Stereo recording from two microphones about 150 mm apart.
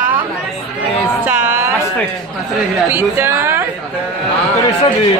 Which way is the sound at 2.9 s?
15° right (ahead or behind).